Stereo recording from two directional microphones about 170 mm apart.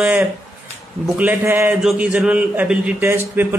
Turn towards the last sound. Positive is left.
turn(degrees=-10)  # may be behind; listen again after turning